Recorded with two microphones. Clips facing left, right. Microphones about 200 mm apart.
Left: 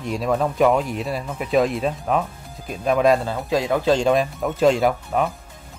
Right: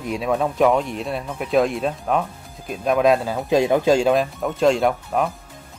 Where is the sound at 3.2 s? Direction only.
15° right (ahead or behind).